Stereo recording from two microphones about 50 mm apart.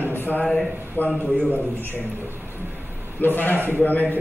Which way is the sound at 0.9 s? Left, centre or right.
Left.